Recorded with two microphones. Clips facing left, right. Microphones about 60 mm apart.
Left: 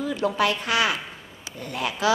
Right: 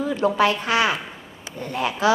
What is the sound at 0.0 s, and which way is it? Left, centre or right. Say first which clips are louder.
Speech: right 4 dB; right.